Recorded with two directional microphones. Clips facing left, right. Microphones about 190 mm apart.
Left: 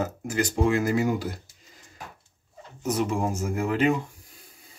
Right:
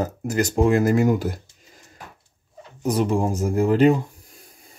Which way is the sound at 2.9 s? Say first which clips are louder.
Right 5 dB; 35° right (ahead or behind).